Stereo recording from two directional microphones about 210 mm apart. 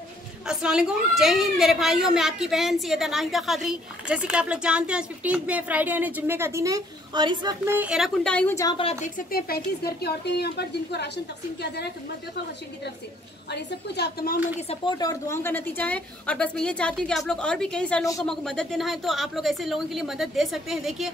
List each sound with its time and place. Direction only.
0.5 s a woman's voice: 5° right (ahead or behind); by 11.9 s 50° left (ahead or behind)
13.5 s a woman's voice: 50° left (ahead or behind)
14.7 s a woman's voice: 20° left (ahead or behind); by 21.1 s centre (ahead or behind)